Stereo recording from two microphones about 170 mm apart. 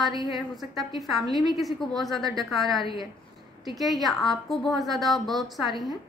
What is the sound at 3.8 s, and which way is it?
A woman's voice, centre (ahead or behind).